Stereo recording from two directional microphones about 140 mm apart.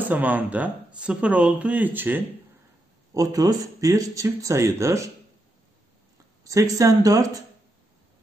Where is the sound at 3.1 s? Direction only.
25° right (ahead or behind).